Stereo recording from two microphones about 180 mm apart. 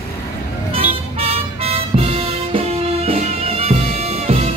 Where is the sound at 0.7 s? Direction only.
35° right (ahead or behind).